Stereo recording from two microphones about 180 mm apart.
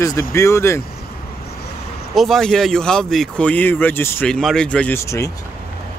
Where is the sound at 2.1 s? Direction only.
Centre (ahead or behind).